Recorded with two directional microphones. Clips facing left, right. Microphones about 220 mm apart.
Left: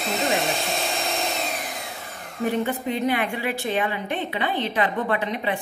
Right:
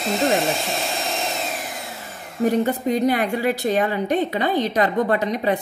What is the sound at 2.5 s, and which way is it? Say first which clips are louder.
A woman's voice: right 5 dB; 40° right (ahead or behind).